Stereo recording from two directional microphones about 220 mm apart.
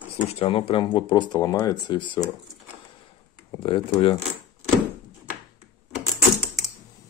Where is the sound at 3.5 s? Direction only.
20° left (ahead or behind).